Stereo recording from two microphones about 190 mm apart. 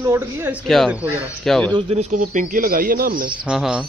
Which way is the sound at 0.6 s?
Centre (ahead or behind).